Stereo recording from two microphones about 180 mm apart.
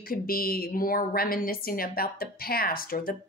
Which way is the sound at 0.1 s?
55° left (ahead or behind).